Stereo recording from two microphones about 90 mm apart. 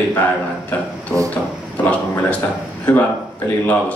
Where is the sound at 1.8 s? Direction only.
15° left (ahead or behind).